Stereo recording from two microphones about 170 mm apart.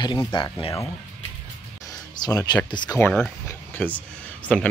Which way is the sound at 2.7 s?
25° left (ahead or behind).